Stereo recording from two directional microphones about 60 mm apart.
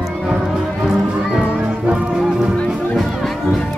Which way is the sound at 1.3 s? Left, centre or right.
Centre.